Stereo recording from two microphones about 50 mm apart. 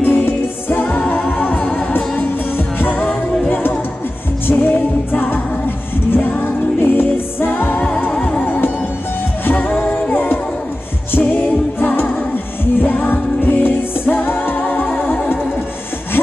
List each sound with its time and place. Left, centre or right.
0.0 s music: left
0.8 s music: left
8.1 s music: left
8.5 s music: left
10.1 s music: left